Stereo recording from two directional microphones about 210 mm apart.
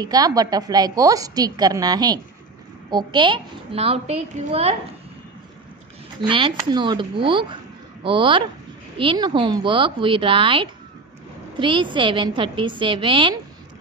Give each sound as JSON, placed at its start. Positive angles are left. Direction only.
{"t": 0.0, "sound": "a woman's voice", "side_deg": -20}
{"t": 6.2, "sound": "a woman's voice", "side_deg": -25}